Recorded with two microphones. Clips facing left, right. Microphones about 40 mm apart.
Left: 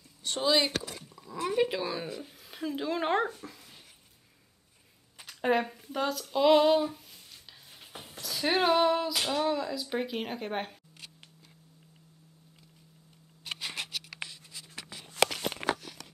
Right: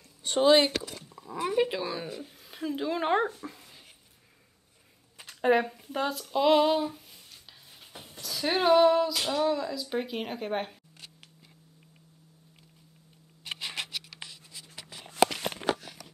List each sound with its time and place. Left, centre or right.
0.2 s speech: right
1.0 s a sound: centre
1.5 s speech: centre
3.3 s speech: right
5.4 s speech: centre
5.9 s speech: right
6.1 s speech: centre
8.2 s female singing: centre
9.1 s speech: centre